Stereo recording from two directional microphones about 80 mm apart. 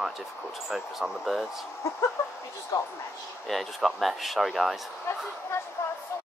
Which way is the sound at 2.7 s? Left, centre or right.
Left.